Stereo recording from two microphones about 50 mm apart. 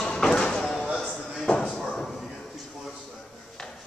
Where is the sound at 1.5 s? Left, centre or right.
Centre.